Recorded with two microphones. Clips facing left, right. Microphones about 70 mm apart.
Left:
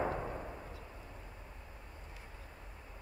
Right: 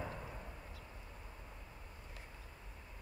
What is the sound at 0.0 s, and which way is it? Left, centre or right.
Artillery fire, left.